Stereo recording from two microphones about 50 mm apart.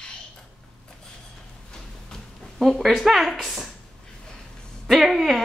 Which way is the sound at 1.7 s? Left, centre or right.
Centre.